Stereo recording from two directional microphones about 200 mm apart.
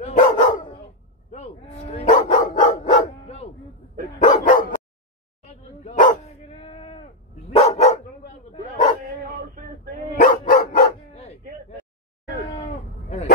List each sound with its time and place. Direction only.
0.0 s dog: 40° left (ahead or behind)
5.9 s dog: 35° left (ahead or behind)
10.2 s dog: 45° left (ahead or behind)